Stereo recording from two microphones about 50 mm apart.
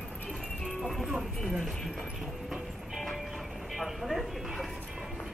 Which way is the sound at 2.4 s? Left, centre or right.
Centre.